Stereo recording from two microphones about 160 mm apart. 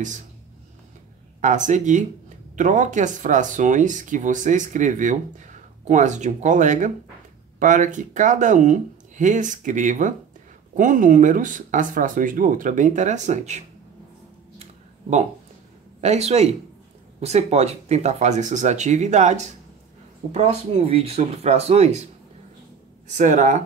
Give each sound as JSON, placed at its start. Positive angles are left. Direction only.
{"t": 1.4, "sound": "speech", "side_deg": -50}
{"t": 14.6, "sound": "a sound", "side_deg": -45}
{"t": 16.0, "sound": "speech", "side_deg": -45}
{"t": 23.0, "sound": "speech", "side_deg": -50}